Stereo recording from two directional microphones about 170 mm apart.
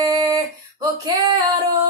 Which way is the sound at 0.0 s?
20° right (ahead or behind).